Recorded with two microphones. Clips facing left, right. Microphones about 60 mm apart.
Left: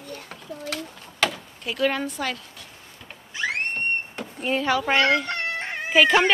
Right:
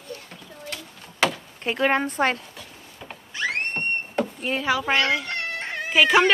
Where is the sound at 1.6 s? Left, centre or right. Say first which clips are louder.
Right 3 dB; right.